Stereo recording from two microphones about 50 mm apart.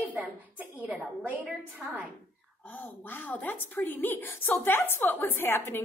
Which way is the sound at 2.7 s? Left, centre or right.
Left.